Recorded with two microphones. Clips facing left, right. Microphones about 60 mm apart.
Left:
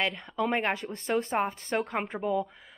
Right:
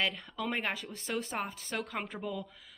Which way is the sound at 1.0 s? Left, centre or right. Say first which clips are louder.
Left 8 dB; centre.